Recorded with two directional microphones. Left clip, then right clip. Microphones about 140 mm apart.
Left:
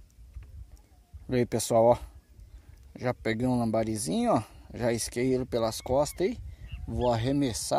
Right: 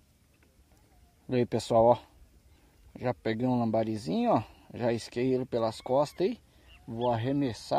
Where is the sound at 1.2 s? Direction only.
10° left (ahead or behind).